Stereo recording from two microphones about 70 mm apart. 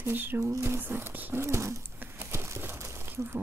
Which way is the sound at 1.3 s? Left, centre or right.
Right.